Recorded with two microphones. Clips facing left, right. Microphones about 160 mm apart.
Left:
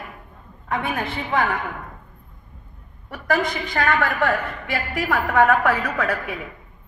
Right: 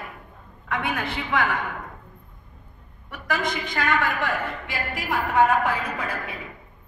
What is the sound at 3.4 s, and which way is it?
A woman's voice, 55° left (ahead or behind).